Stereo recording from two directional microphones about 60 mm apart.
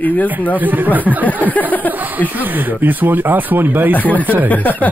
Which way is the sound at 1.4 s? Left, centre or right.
Left.